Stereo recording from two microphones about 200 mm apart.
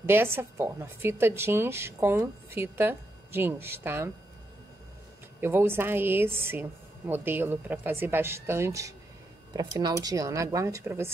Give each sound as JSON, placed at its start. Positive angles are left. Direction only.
{"t": 0.0, "sound": "a woman's voice", "side_deg": -10}
{"t": 5.4, "sound": "a woman's voice", "side_deg": -10}